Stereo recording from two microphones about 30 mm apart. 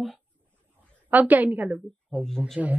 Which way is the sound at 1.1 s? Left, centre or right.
Right.